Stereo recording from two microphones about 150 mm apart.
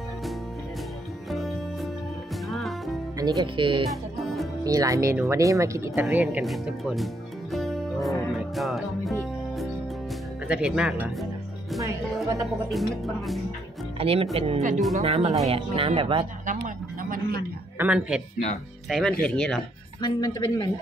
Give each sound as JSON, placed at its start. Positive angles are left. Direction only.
{"t": 1.3, "sound": "music", "side_deg": 0}
{"t": 3.2, "sound": "speech", "side_deg": -25}
{"t": 3.9, "sound": "music", "side_deg": 0}
{"t": 4.6, "sound": "speech", "side_deg": -20}
{"t": 6.2, "sound": "speech", "side_deg": 0}
{"t": 7.5, "sound": "music", "side_deg": 0}
{"t": 10.5, "sound": "speech", "side_deg": -5}
{"t": 12.6, "sound": "speech", "side_deg": 0}
{"t": 13.9, "sound": "speech", "side_deg": -40}
{"t": 16.4, "sound": "a sound", "side_deg": -65}
{"t": 17.7, "sound": "speech", "side_deg": -10}
{"t": 20.0, "sound": "speech", "side_deg": 30}